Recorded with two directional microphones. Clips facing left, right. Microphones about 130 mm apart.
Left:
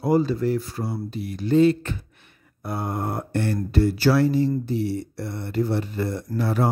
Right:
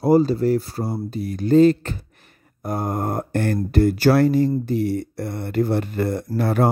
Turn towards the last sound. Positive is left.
turn(degrees=-55)  # may be behind; listen again after turning